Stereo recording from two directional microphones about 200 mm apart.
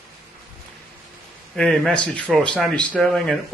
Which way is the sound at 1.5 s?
5° left (ahead or behind).